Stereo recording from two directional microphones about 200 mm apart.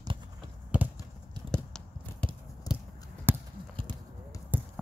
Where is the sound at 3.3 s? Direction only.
10° right (ahead or behind).